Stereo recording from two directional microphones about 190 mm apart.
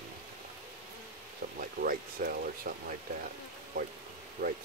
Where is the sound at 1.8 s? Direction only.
50° right (ahead or behind).